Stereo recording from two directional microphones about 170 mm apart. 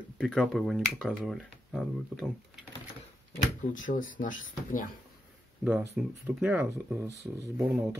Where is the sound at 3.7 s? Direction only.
50° left (ahead or behind).